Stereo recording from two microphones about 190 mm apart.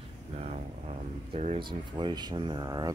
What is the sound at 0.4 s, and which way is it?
Speech, 35° right (ahead or behind).